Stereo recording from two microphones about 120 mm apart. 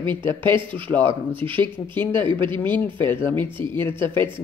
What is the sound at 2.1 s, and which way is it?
Speech, 45° right (ahead or behind).